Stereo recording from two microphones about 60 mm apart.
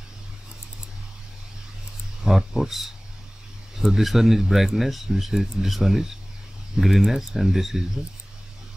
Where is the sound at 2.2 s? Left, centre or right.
Centre.